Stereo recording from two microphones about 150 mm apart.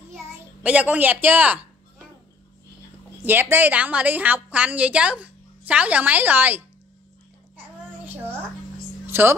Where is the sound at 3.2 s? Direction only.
15° right (ahead or behind).